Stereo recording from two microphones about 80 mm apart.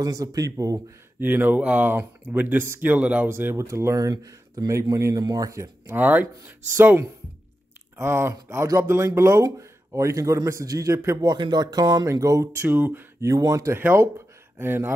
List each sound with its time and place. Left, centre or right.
0.0 s speech: right
1.2 s speech: right
4.6 s speech: right
5.9 s speech: right
11.2 s speech: right
12.1 s speech: right
12.6 s speech: right
13.2 s speech: right
13.7 s speech: right